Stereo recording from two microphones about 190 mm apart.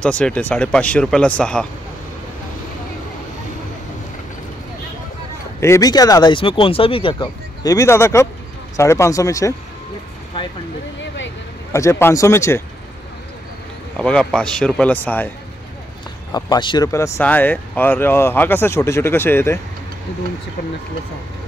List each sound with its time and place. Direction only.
0.0 s speech: 5° left (ahead or behind)
5.6 s speech: 15° left (ahead or behind)
11.0 s vehicle: 70° left (ahead or behind)
11.7 s speech: 15° left (ahead or behind)
13.9 s a man's voice: 5° left (ahead or behind)